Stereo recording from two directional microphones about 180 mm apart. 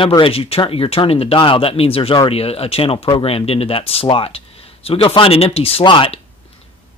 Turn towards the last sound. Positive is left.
turn(degrees=30)  # may be behind; listen again after turning